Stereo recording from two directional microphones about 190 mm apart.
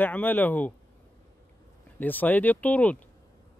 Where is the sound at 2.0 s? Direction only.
10° left (ahead or behind).